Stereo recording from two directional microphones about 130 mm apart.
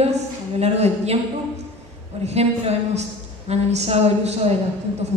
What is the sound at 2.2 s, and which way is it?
A woman's voice, 55° right (ahead or behind).